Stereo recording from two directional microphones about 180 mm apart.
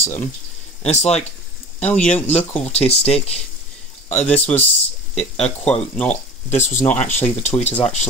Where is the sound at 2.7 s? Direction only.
35° left (ahead or behind).